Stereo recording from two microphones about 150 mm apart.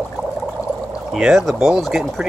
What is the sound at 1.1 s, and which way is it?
Speech, centre (ahead or behind).